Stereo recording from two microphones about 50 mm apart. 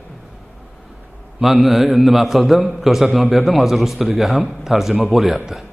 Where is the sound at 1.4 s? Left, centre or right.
Centre.